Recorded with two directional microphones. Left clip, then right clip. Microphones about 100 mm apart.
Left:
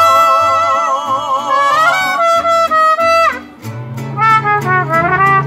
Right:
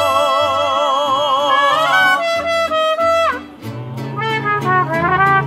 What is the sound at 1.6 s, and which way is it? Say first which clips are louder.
Music: left 1 dB; 10° right (ahead or behind).